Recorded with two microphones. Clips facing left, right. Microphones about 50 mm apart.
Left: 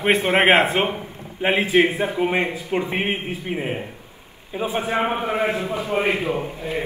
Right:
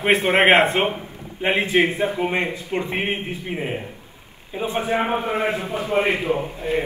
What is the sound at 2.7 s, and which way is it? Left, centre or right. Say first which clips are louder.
Speech: left 1 dB; centre.